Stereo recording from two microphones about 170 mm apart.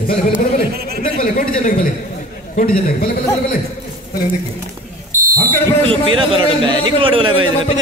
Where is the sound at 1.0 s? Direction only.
35° left (ahead or behind).